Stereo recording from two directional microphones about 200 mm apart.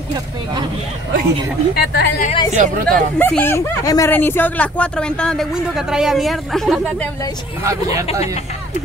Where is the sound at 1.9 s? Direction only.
55° left (ahead or behind).